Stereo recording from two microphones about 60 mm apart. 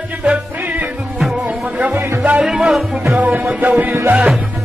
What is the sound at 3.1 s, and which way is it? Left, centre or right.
Music, right.